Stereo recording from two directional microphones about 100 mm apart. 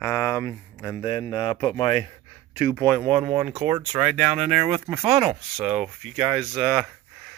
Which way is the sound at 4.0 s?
5° right (ahead or behind).